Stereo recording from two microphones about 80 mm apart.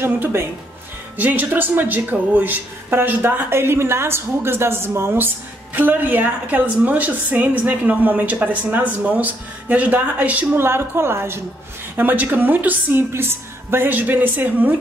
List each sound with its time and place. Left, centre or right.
0.0 s a woman's voice: right
10.6 s a woman's voice: right